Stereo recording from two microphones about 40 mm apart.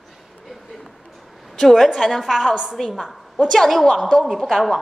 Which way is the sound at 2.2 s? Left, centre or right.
Centre.